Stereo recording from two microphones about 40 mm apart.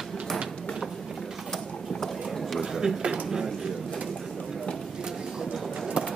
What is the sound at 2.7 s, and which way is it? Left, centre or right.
Speech, centre.